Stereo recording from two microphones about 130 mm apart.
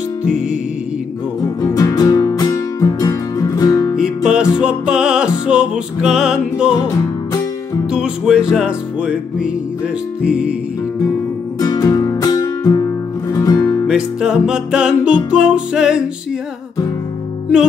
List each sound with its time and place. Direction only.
1.6 s music: 25° left (ahead or behind)
3.9 s music: 5° right (ahead or behind)
7.9 s music: 5° right (ahead or behind)
11.6 s music: 30° left (ahead or behind)
13.8 s music: 5° right (ahead or behind)